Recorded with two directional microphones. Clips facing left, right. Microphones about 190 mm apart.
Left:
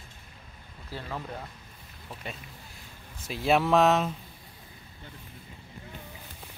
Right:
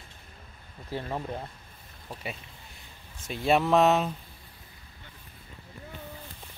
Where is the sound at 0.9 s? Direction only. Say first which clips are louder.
Right 4 dB; 20° right (ahead or behind).